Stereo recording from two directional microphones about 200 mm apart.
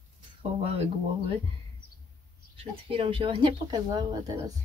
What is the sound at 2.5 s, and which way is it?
Speech, 25° right (ahead or behind).